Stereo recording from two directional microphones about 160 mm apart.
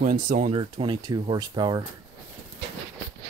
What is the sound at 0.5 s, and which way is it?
Speech, 30° right (ahead or behind).